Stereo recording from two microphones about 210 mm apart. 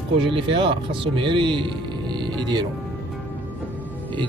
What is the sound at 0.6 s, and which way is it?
Speech, 25° right (ahead or behind).